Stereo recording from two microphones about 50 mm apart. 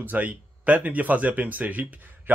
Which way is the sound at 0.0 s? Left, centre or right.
Right.